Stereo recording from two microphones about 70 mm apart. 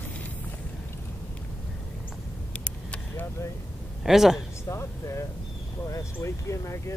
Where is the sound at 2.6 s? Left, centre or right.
Centre.